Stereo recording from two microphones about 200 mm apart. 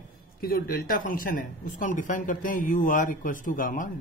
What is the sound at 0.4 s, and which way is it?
Speech, 50° left (ahead or behind).